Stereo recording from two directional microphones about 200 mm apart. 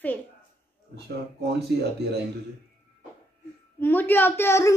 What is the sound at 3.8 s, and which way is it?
Speech, 10° left (ahead or behind).